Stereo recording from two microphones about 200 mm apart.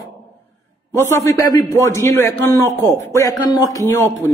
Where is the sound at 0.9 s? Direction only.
15° left (ahead or behind).